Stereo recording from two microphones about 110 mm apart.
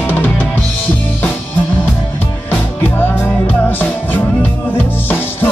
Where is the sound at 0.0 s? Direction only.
15° left (ahead or behind).